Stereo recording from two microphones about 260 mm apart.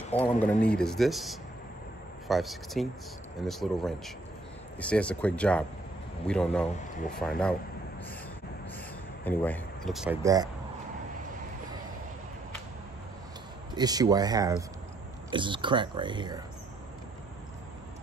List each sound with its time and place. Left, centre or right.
0.2 s speech: centre
9.2 s speech: centre
10.2 s speech: centre
13.7 s speech: centre